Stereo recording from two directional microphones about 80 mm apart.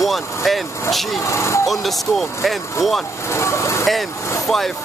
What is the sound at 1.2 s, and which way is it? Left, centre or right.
Speech, left.